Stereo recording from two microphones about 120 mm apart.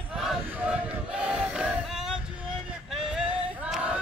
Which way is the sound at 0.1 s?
5° right (ahead or behind).